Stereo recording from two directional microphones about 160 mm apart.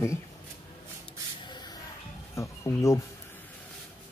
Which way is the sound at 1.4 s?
25° left (ahead or behind).